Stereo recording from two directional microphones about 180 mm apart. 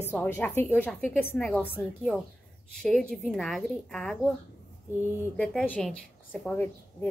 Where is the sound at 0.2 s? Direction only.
10° left (ahead or behind).